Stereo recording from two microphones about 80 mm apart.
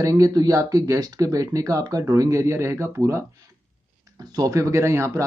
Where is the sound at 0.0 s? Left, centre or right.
Right.